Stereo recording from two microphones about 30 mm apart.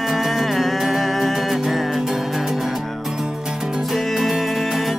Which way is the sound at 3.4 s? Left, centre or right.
Centre.